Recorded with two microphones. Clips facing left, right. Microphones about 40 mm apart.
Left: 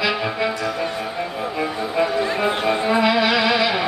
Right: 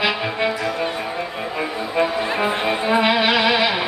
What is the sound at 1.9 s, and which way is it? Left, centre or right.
Speech, centre.